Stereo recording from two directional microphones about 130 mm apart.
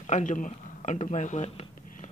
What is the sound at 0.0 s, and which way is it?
Speech, 70° left (ahead or behind).